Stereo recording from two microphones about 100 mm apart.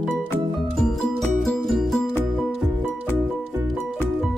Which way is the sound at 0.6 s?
Centre (ahead or behind).